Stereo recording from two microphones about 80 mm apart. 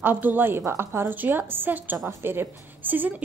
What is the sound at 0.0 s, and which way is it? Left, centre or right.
A woman's voice, right.